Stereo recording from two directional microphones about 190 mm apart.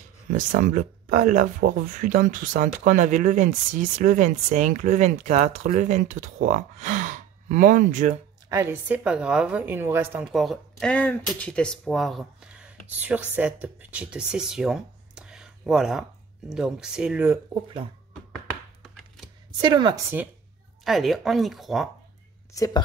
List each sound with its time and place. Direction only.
0.3 s speech: 45° right (ahead or behind)
8.5 s a woman's voice: 15° right (ahead or behind)
19.6 s a woman's voice: 25° right (ahead or behind)
20.8 s a woman's voice: centre (ahead or behind)
22.5 s speech: 15° left (ahead or behind)